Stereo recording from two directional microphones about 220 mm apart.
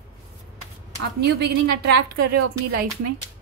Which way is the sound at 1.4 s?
45° right (ahead or behind).